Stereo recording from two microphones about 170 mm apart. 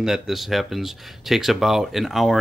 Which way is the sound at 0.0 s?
Centre (ahead or behind).